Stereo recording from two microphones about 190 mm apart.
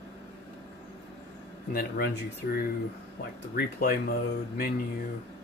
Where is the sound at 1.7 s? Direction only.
55° left (ahead or behind).